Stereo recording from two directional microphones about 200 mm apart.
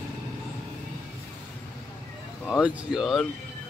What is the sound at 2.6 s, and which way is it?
Speech, centre (ahead or behind).